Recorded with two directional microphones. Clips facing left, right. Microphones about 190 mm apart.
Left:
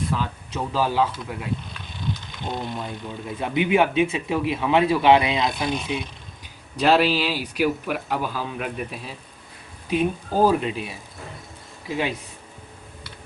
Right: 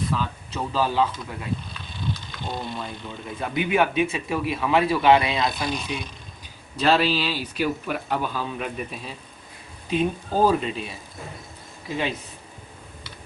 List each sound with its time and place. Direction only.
0.1 s speech: 15° left (ahead or behind)
2.1 s speech: 15° left (ahead or behind)
6.8 s speech: 10° left (ahead or behind)